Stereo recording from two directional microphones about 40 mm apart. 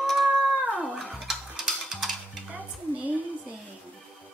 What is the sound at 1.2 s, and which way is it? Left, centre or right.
Music, centre.